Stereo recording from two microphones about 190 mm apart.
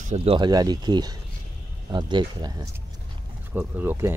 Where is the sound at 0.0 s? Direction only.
35° right (ahead or behind).